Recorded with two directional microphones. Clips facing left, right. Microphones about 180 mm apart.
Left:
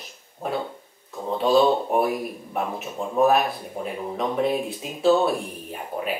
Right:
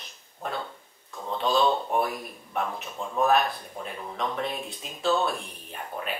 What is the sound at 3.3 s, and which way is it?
Speech, 5° left (ahead or behind).